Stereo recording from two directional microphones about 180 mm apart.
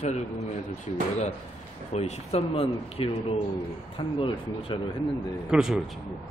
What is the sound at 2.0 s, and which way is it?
Speech, 35° left (ahead or behind).